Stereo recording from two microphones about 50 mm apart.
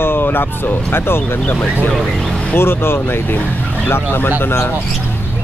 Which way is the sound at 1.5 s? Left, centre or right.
Left.